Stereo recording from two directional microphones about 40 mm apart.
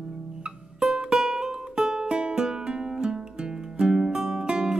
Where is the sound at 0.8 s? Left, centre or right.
Centre.